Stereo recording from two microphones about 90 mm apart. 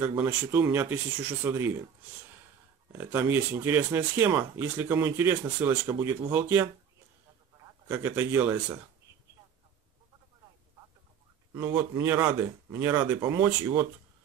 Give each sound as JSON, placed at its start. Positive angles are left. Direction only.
{"t": 0.0, "sound": "speech", "side_deg": -20}
{"t": 2.9, "sound": "speech", "side_deg": -25}
{"t": 7.9, "sound": "speech", "side_deg": -25}
{"t": 11.5, "sound": "speech", "side_deg": -25}